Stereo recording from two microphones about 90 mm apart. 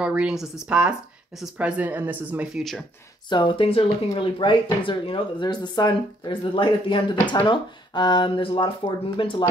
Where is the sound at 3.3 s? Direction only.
65° left (ahead or behind).